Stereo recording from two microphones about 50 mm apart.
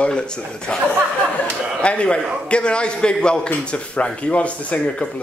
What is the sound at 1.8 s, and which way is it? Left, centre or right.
A man's voice, left.